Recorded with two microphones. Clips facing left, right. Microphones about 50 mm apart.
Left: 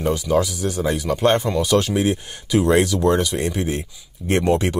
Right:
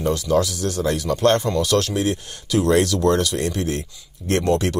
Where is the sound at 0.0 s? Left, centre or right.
Centre.